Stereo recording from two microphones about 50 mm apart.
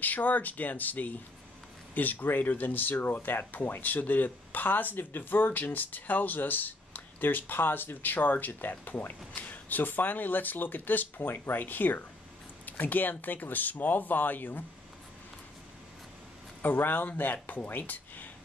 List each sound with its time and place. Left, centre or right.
0.0 s speech: left
16.6 s speech: left